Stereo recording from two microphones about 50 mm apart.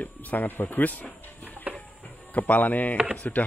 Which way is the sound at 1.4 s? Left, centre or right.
Right.